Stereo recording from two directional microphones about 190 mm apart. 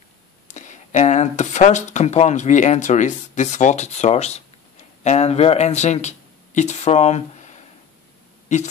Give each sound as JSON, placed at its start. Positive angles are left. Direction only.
{"t": 0.6, "sound": "speech", "side_deg": 40}